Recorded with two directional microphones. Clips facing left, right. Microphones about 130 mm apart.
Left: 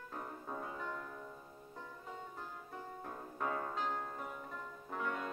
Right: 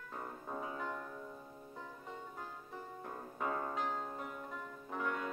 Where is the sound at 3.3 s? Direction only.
Centre (ahead or behind).